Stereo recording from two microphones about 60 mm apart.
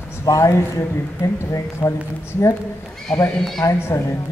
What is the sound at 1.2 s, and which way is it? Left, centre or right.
Speech, left.